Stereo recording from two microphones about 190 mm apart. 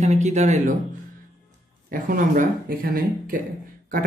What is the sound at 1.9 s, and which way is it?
Speech, 45° right (ahead or behind).